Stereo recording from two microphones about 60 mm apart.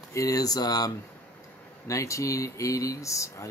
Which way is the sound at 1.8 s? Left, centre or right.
Left.